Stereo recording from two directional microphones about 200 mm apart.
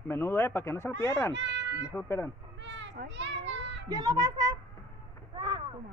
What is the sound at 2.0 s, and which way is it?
Speech, 15° left (ahead or behind).